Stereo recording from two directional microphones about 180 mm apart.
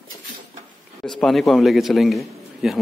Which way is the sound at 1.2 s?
Centre (ahead or behind).